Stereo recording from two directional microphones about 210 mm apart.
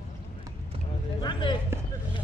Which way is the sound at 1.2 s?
20° left (ahead or behind).